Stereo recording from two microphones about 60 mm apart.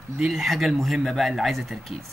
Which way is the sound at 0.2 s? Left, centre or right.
Centre.